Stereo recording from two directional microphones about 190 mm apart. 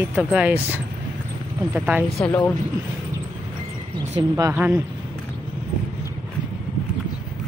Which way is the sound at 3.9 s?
20° right (ahead or behind).